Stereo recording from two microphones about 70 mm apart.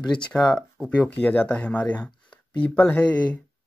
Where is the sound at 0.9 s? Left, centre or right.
Centre.